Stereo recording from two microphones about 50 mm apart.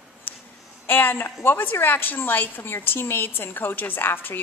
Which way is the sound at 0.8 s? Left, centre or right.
Left.